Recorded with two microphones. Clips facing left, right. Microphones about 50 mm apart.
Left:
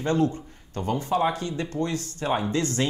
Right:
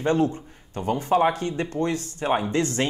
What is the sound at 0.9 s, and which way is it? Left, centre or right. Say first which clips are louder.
Speech: right 4 dB; right.